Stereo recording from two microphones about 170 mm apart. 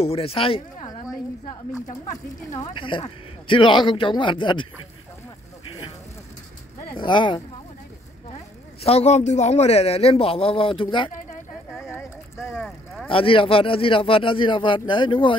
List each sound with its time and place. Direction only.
0.0 s speech: 35° left (ahead or behind)
2.5 s speech: 25° left (ahead or behind)
7.0 s speech: 30° left (ahead or behind)
8.8 s speech: 40° left (ahead or behind)
12.4 s vehicle: centre (ahead or behind)
13.1 s speech: 30° left (ahead or behind)